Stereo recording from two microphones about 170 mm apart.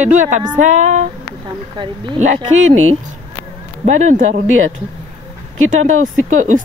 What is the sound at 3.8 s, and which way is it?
Speech, 45° right (ahead or behind).